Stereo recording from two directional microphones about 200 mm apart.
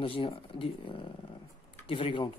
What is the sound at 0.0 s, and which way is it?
Speech, 25° left (ahead or behind).